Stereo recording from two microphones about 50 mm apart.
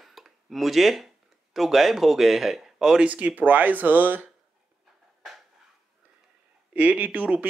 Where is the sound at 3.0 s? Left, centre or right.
Right.